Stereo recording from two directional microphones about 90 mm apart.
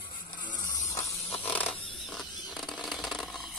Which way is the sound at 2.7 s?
Centre (ahead or behind).